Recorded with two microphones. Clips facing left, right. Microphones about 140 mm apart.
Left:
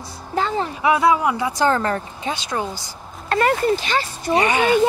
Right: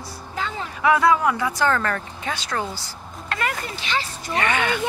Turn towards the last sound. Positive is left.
turn(degrees=20)  # may be behind; listen again after turning